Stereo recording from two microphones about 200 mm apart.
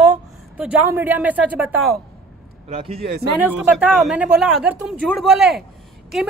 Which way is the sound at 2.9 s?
50° right (ahead or behind).